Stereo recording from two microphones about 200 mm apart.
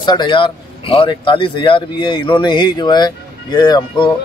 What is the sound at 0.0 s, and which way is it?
Speech, 20° left (ahead or behind).